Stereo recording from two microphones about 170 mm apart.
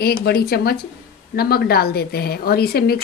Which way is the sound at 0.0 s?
70° left (ahead or behind).